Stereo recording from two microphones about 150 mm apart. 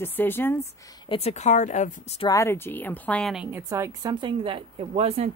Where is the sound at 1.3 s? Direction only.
55° left (ahead or behind).